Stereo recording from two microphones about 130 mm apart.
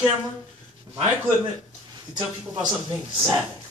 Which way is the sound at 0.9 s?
25° right (ahead or behind).